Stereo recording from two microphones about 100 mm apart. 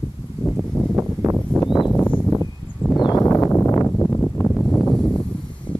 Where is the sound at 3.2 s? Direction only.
25° left (ahead or behind).